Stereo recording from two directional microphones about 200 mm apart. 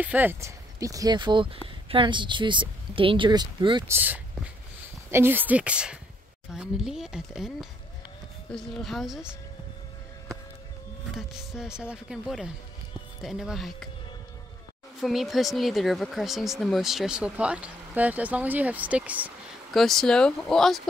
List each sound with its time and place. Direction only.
0.0 s speech: 10° right (ahead or behind)
3.9 s speech: 10° right (ahead or behind)
11.1 s speech: 5° right (ahead or behind)
15.0 s speech: centre (ahead or behind)